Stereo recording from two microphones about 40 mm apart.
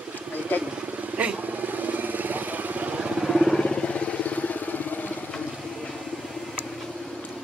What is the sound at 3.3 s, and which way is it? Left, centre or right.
Vehicle, centre.